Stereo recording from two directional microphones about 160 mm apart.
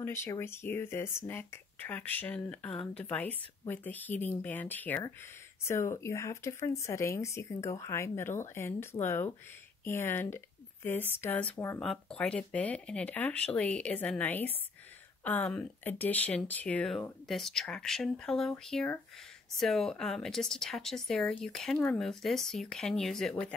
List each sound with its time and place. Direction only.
0.0 s speech: 15° left (ahead or behind)